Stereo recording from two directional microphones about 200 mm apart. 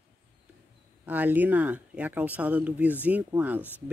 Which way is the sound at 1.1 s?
10° right (ahead or behind).